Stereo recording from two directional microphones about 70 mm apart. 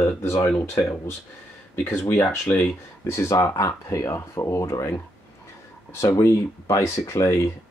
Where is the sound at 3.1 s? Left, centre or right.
Left.